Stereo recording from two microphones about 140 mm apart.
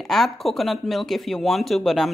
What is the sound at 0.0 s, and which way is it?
A man's voice, centre (ahead or behind).